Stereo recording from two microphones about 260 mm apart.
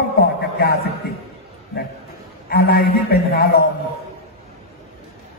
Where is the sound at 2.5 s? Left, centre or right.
Left.